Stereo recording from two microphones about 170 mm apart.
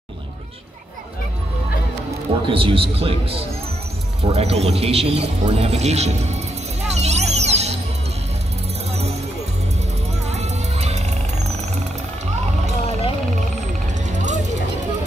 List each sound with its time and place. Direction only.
2.4 s speech: 30° right (ahead or behind)
6.8 s music: 40° right (ahead or behind)
10.3 s music: 40° right (ahead or behind)
14.0 s music: 45° right (ahead or behind)